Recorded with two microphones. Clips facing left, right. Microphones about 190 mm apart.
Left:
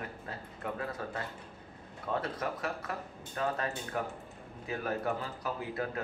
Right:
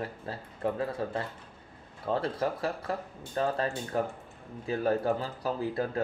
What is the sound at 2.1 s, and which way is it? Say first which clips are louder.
Speech: right 5 dB; 30° right (ahead or behind).